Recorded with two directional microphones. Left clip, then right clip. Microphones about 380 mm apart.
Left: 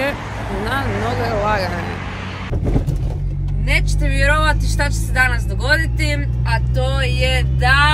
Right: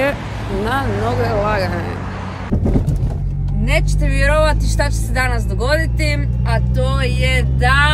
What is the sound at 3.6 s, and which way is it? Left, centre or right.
Speech, centre.